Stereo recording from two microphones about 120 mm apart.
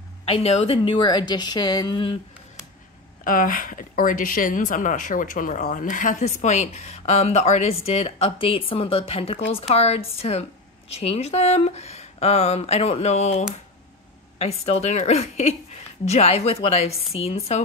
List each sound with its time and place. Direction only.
0.2 s a woman's voice: 55° left (ahead or behind); by 2.1 s 40° left (ahead or behind)
3.6 s speech: 90° left; by 8.3 s 65° left (ahead or behind)
8.4 s a woman's voice: 50° left (ahead or behind); by 13.5 s 70° left (ahead or behind)
14.4 s a woman's voice: 60° left (ahead or behind)